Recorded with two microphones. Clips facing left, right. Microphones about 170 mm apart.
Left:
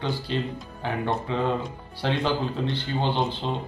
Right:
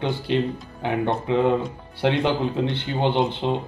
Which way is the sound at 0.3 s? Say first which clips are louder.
Right 6 dB; 20° right (ahead or behind).